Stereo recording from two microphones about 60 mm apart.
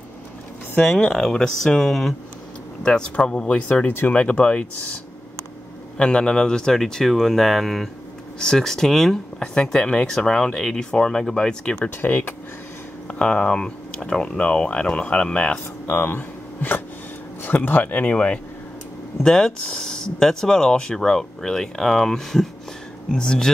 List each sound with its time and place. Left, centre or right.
0.8 s speech: centre
5.9 s speech: centre
12.0 s speech: left
13.2 s speech: centre
15.9 s speech: left
19.2 s speech: centre